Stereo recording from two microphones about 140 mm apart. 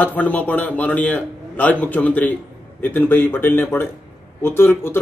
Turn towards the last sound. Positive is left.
turn(degrees=15)  # may be behind; listen again after turning